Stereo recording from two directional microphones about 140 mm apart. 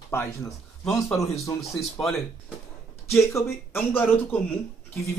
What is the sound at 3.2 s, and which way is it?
Speech, 20° left (ahead or behind).